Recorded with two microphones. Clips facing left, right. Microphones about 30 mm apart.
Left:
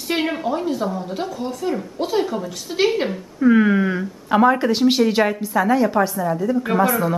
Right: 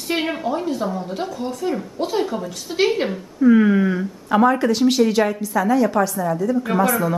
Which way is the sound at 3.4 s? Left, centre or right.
Centre.